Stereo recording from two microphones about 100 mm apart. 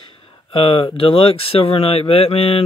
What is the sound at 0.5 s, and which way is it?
Speech, 60° left (ahead or behind).